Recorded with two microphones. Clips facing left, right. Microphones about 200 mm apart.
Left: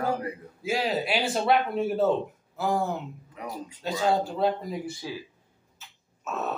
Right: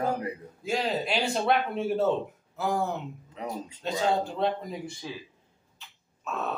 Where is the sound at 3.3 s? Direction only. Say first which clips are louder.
Right 2 dB; 25° right (ahead or behind).